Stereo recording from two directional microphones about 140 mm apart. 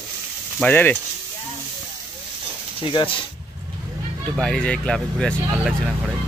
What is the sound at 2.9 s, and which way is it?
Speech, 40° left (ahead or behind).